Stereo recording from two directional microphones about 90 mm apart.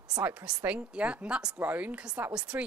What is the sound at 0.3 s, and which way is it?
Speech, 10° right (ahead or behind).